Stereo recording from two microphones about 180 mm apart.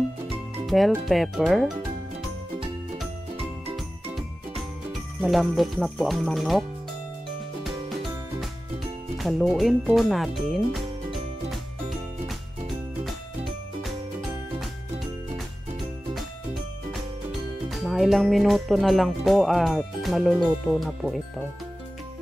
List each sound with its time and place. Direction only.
0.7 s speech: centre (ahead or behind)
5.2 s speech: centre (ahead or behind)
7.6 s music: centre (ahead or behind)
9.2 s speech: centre (ahead or behind)
12.3 s music: centre (ahead or behind)
17.3 s speech: centre (ahead or behind)